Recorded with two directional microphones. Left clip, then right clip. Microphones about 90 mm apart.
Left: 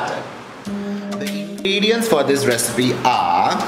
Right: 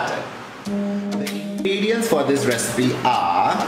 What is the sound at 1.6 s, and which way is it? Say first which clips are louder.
Speech: left 3 dB; 45° left (ahead or behind).